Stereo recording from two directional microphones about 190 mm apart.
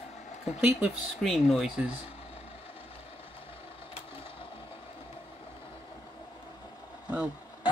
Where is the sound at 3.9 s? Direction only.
30° left (ahead or behind).